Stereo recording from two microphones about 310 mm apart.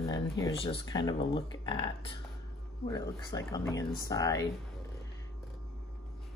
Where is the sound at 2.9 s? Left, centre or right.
Centre.